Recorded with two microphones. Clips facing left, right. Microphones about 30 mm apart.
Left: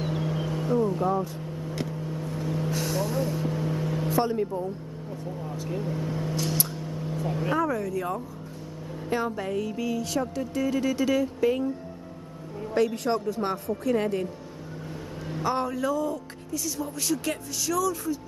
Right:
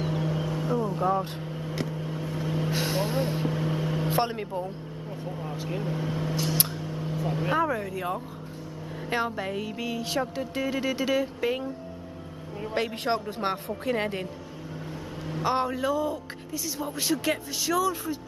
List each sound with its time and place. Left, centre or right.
0.0 s vehicle: centre
1.4 s vehicle: right
3.4 s vehicle: right
4.1 s a woman's voice: right
5.2 s a man's voice: right
6.7 s vehicle: centre
7.5 s a man's voice: right
12.7 s a woman's voice: right
15.4 s a man's voice: right